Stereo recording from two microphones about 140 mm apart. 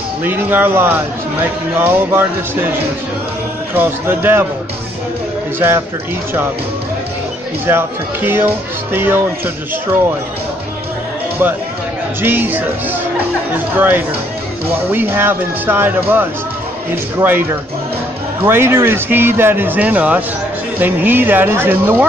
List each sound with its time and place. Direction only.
0.2 s speech: 15° right (ahead or behind)
3.7 s speech: 15° right (ahead or behind)
5.6 s speech: 15° right (ahead or behind)
7.6 s speech: 15° right (ahead or behind)
12.2 s speech: 15° right (ahead or behind)
13.7 s speech: 15° right (ahead or behind)